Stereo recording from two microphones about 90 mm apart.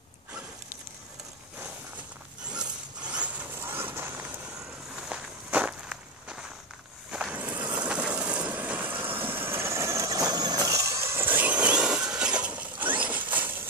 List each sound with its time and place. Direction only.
2.5 s zipper: 10° right (ahead or behind)
3.5 s vehicle: 25° right (ahead or behind)
4.6 s walk: 10° right (ahead or behind)
7.1 s vehicle: 10° right (ahead or behind)
13.0 s zipper: 20° right (ahead or behind)